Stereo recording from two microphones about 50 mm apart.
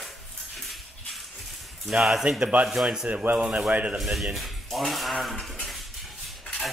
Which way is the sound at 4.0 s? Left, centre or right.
Centre.